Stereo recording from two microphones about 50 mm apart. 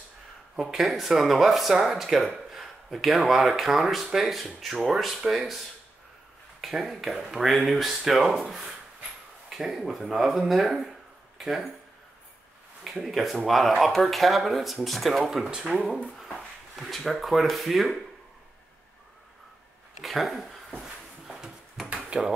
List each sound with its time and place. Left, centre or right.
0.6 s speech: centre
6.6 s speech: centre
12.8 s speech: centre
20.0 s speech: centre
20.8 s a sound: centre
21.8 s finger snapping: centre